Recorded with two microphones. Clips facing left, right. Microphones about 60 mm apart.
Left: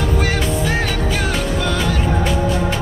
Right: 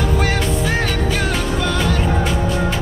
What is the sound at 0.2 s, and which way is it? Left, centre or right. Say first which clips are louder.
Music: even; centre.